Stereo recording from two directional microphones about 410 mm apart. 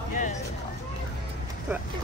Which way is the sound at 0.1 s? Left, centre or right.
Centre.